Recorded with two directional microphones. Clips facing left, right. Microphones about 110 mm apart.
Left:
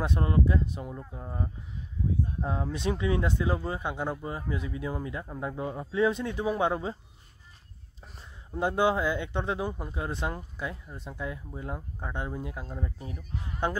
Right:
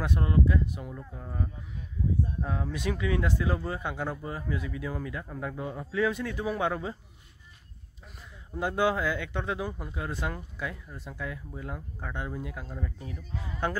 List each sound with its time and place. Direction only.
0.0 s speech: 25° left (ahead or behind)
8.5 s speech: 25° left (ahead or behind)